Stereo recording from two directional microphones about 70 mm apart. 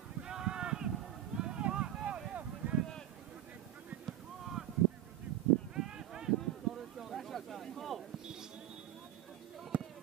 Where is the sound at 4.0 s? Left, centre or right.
Centre.